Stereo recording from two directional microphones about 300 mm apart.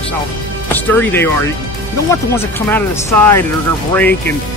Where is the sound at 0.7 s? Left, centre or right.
Centre.